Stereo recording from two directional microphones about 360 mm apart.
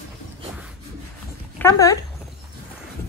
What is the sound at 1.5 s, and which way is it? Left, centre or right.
Speech, centre.